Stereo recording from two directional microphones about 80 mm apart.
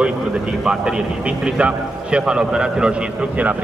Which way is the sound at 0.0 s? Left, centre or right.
Centre.